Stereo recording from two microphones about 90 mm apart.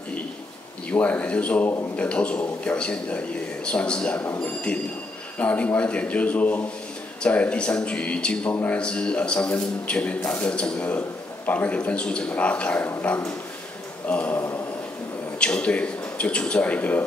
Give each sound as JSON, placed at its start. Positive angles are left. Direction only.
{"t": 0.8, "sound": "a man's voice", "side_deg": 15}